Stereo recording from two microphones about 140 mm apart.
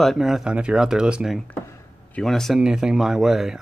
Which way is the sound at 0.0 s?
Centre (ahead or behind).